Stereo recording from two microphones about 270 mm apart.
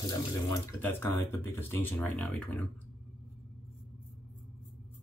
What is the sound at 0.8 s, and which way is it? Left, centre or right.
Speech, centre.